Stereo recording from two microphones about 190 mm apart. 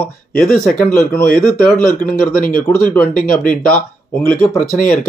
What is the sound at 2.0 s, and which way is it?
Speech, 50° left (ahead or behind).